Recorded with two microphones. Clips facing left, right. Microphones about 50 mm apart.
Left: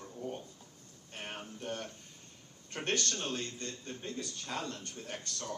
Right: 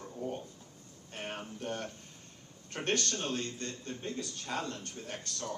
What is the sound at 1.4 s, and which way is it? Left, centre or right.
Speech, right.